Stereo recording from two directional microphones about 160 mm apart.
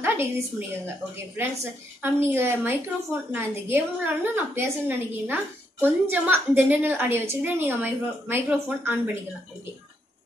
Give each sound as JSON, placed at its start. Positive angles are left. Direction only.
{"t": 0.0, "sound": "a woman's voice", "side_deg": -15}